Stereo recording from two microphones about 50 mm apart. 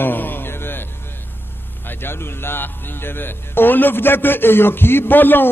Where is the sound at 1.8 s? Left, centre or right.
Left.